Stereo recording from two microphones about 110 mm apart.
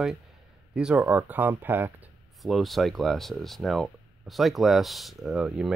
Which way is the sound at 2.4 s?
Centre (ahead or behind).